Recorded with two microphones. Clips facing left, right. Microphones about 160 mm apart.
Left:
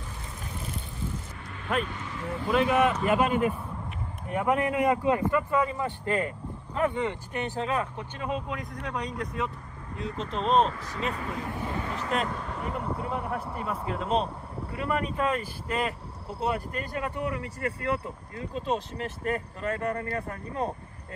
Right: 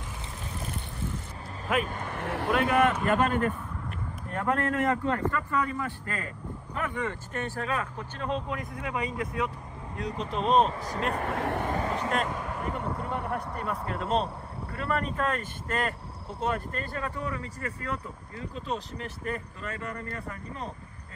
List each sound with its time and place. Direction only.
1.9 s speech: 55° right (ahead or behind); by 2.5 s 70° right (ahead or behind)
2.5 s speech: centre (ahead or behind); by 7.9 s 20° left (ahead or behind)
8.2 s speech: 5° left (ahead or behind)
11.1 s speech: 65° right (ahead or behind)
11.7 s vehicle: 35° right (ahead or behind)
12.1 s speech: centre (ahead or behind); by 17.4 s 15° left (ahead or behind)
19.2 s speech: 50° left (ahead or behind)